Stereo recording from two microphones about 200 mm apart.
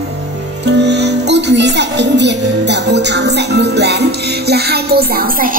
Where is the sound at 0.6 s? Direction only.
60° right (ahead or behind).